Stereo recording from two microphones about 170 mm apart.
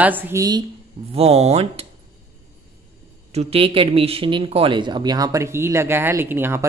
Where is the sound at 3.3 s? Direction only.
35° right (ahead or behind).